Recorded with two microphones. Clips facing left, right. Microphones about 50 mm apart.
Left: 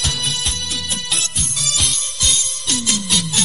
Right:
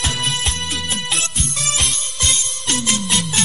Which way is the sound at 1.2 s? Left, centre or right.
Right.